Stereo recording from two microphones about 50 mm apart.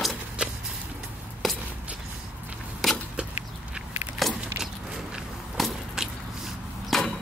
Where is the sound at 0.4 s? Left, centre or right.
Right.